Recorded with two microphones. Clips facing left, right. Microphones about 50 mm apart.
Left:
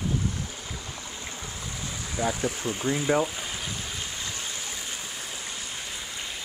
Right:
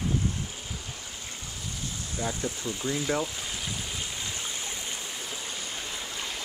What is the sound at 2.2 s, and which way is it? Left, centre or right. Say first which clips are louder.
Speech: left 5 dB; left.